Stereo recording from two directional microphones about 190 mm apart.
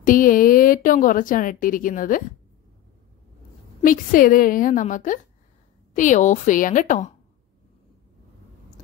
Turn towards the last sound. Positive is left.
turn(degrees=40)  # may be behind; listen again after turning